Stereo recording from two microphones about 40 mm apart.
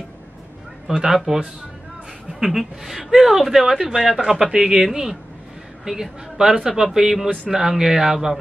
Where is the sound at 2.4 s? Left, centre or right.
Centre.